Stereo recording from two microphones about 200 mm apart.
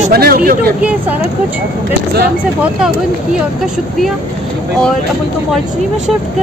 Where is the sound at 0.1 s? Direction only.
50° right (ahead or behind).